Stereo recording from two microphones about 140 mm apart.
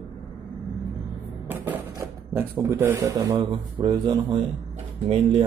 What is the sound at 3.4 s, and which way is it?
Speech, 35° right (ahead or behind).